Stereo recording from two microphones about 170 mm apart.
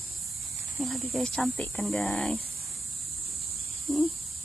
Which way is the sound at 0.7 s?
Centre (ahead or behind).